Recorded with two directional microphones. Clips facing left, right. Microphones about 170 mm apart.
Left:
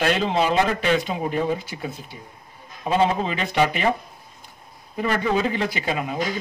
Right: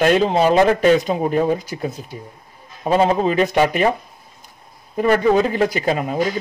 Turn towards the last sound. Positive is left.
turn(degrees=-45)  # may be behind; listen again after turning